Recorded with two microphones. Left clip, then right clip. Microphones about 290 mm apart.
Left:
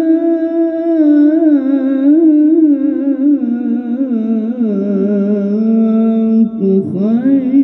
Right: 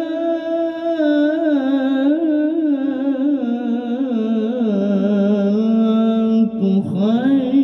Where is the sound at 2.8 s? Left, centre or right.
Right.